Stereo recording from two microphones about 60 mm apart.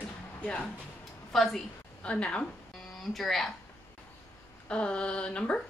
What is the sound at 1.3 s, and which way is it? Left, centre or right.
Speech, centre.